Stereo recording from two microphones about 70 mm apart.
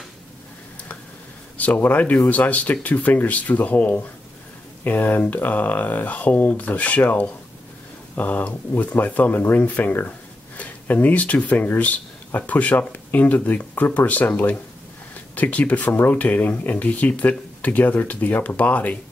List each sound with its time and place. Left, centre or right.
1.6 s speech: left